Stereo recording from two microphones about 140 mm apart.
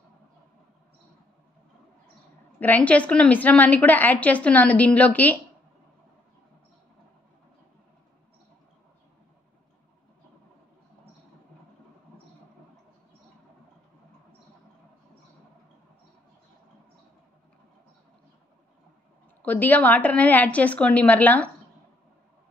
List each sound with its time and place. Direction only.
2.6 s a woman's voice: 10° left (ahead or behind)
19.4 s a woman's voice: 10° left (ahead or behind)